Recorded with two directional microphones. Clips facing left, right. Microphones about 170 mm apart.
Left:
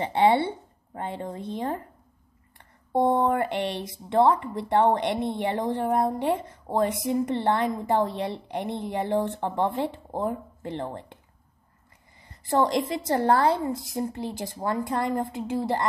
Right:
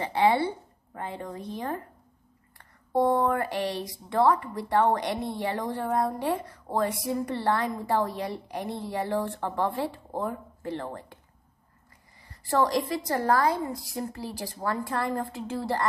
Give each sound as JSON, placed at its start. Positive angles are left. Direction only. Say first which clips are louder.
{"t": 0.0, "sound": "speech", "louder": "left 2 dB", "side_deg": 25}
{"t": 12.3, "sound": "speech", "louder": "left 2 dB", "side_deg": 20}